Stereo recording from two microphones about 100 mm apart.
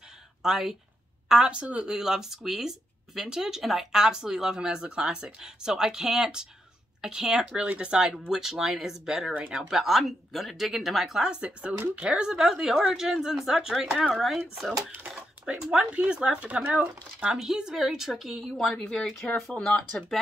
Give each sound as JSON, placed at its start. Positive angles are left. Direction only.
{"t": 0.4, "sound": "speech", "side_deg": -5}
{"t": 9.6, "sound": "speech", "side_deg": -5}